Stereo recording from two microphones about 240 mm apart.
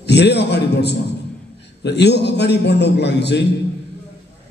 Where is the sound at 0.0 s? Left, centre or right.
Left.